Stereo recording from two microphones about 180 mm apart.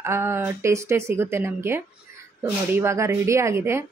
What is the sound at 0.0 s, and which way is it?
Speech, 15° right (ahead or behind).